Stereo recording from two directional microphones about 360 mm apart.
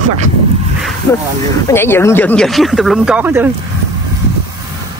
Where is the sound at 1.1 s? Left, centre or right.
Centre.